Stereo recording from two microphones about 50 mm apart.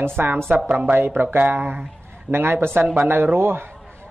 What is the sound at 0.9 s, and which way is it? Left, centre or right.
Speech, right.